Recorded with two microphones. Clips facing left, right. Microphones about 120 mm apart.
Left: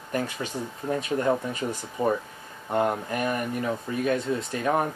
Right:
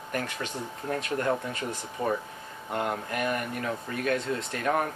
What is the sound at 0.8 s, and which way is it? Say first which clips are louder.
Speech: left 3 dB; 10° left (ahead or behind).